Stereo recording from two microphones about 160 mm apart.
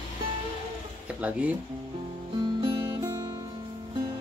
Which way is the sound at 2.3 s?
35° right (ahead or behind).